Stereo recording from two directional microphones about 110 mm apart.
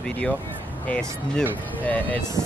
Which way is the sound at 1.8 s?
15° left (ahead or behind).